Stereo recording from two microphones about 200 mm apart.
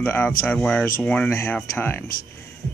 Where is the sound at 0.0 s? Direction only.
10° left (ahead or behind).